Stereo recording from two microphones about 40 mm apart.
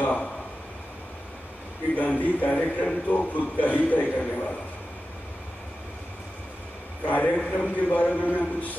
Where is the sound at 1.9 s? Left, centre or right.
Left.